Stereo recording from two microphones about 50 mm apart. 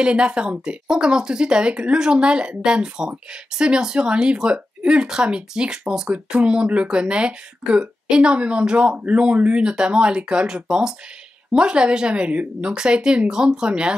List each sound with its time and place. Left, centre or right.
0.0 s speech: right